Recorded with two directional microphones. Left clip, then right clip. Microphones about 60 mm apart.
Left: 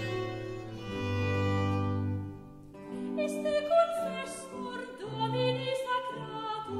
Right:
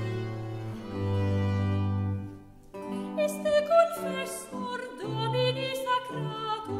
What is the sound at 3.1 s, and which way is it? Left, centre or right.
Music, right.